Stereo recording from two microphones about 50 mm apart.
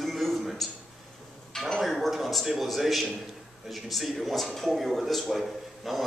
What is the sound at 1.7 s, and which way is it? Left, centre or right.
Speech, centre.